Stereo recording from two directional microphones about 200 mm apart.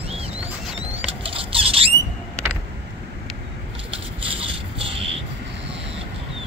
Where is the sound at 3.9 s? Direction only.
30° right (ahead or behind).